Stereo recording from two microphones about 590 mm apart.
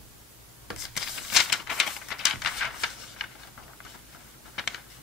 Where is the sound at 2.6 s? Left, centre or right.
Left.